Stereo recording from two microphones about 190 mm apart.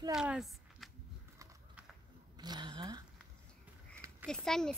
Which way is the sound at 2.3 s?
20° right (ahead or behind).